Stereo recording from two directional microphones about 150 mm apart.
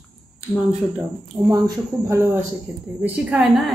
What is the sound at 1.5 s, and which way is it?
Speech, 20° right (ahead or behind).